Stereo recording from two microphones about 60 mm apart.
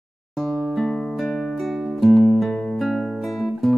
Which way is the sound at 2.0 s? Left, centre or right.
Centre.